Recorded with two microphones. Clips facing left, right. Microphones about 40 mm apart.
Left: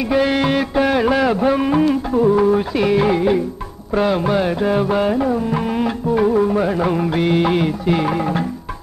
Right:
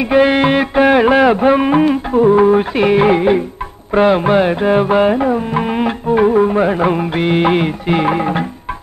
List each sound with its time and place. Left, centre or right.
0.0 s music: right